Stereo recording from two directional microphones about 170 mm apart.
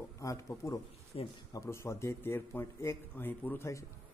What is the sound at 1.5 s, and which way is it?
Speech, 15° left (ahead or behind).